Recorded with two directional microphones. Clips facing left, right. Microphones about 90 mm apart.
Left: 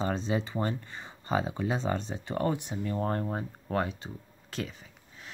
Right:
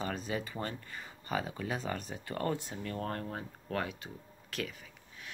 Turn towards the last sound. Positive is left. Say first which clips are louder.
# left 2 dB
turn(degrees=30)  # may be behind; listen again after turning